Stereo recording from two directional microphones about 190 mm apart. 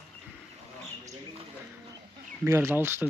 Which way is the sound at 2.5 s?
10° right (ahead or behind).